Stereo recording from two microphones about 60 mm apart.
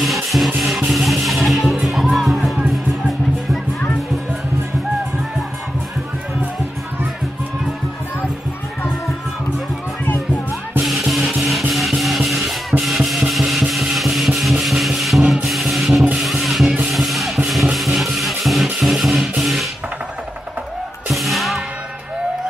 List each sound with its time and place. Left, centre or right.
0.0 s music: centre
10.0 s music: left
10.9 s music: centre
13.3 s wood: centre
13.9 s music: centre
21.1 s music: centre